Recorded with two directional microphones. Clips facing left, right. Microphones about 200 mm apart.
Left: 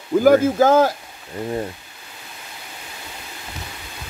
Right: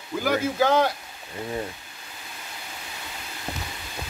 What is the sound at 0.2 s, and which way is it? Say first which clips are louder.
Speech: left 9 dB; 45° left (ahead or behind).